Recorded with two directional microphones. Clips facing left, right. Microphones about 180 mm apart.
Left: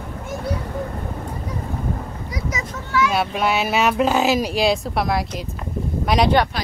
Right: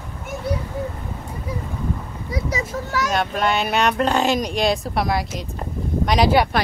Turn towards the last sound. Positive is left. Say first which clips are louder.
# even
turn(degrees=0)  # may be behind; listen again after turning